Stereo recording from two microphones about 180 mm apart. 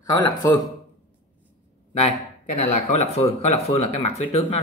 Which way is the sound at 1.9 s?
35° left (ahead or behind).